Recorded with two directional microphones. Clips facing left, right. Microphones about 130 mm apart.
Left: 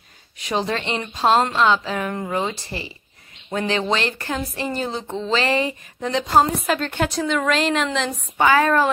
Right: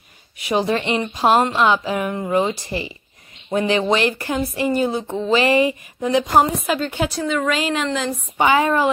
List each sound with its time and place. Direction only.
0.4 s a woman's voice: 10° right (ahead or behind)
8.4 s speech: 15° right (ahead or behind)